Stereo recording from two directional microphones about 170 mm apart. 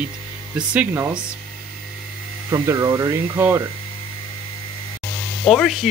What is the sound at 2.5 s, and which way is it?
Speech, 20° right (ahead or behind).